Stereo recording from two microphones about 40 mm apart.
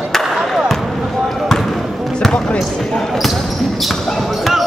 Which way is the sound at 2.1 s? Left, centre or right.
Centre.